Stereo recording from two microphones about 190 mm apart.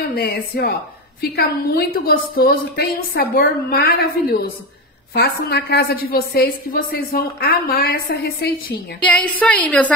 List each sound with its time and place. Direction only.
0.0 s a woman's voice: 55° left (ahead or behind)
9.4 s a woman's voice: 5° left (ahead or behind)